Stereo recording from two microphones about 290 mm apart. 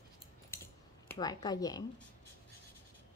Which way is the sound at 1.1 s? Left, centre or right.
Centre.